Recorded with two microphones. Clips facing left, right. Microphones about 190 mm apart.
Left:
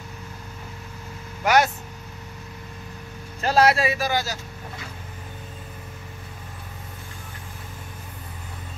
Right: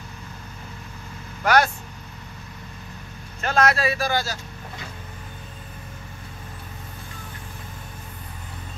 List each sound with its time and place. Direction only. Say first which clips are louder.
1.4 s vehicle: even; 20° left (ahead or behind)
3.4 s speech: left 2 dB; 30° left (ahead or behind)